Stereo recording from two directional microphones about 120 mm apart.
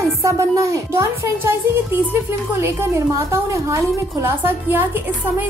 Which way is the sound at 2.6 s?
20° right (ahead or behind).